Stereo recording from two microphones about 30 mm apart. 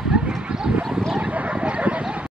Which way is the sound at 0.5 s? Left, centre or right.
Right.